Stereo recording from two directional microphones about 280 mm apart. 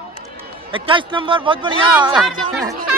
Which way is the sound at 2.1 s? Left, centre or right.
Centre.